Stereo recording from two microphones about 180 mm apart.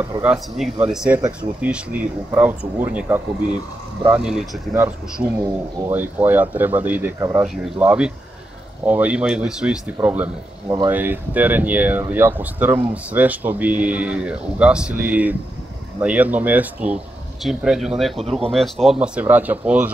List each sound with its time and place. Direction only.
0.0 s speech: 10° right (ahead or behind)
5.4 s speech: 20° right (ahead or behind)
5.9 s speech: 10° right (ahead or behind)
7.4 s speech: centre (ahead or behind)